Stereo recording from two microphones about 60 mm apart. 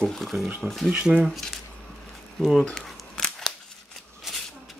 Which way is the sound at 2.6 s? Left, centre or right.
Centre.